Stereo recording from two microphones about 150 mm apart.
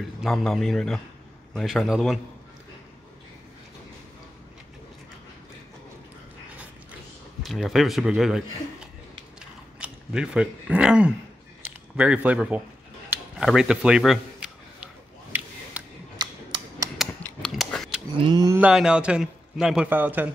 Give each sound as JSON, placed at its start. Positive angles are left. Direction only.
{"t": 0.2, "sound": "a man's voice", "side_deg": 0}
{"t": 6.5, "sound": "mechanisms", "side_deg": -10}
{"t": 7.4, "sound": "a man's voice", "side_deg": 0}
{"t": 9.4, "sound": "chewing", "side_deg": -5}
{"t": 11.6, "sound": "speech", "side_deg": -10}
{"t": 13.4, "sound": "a sound", "side_deg": -5}
{"t": 16.2, "sound": "a sound", "side_deg": -30}
{"t": 17.2, "sound": "a sound", "side_deg": 5}
{"t": 18.1, "sound": "speech", "side_deg": -30}
{"t": 18.6, "sound": "a man's voice", "side_deg": -5}